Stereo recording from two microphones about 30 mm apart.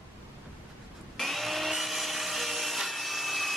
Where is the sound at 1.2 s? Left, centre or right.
Centre.